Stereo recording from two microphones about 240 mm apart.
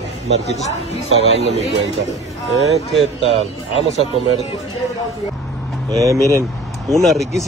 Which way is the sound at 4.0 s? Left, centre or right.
Right.